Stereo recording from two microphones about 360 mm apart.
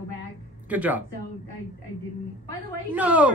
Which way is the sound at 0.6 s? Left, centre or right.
Centre.